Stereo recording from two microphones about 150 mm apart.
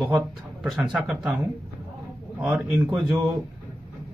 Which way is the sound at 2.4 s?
10° right (ahead or behind).